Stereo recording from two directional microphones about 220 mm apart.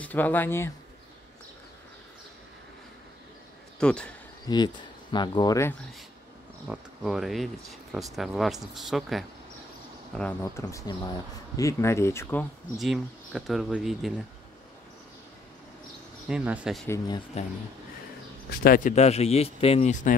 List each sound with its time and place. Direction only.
0.0 s speech: 10° left (ahead or behind)
3.8 s speech: 5° left (ahead or behind)
4.5 s speech: 15° left (ahead or behind)
6.7 s speech: centre (ahead or behind)
16.3 s speech: 5° right (ahead or behind)
16.8 s speech: 15° left (ahead or behind)
18.5 s speech: 40° left (ahead or behind)